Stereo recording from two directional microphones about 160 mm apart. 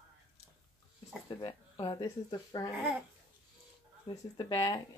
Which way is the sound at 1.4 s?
30° left (ahead or behind).